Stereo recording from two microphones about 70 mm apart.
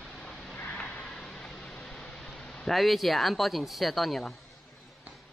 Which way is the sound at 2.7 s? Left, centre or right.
Centre.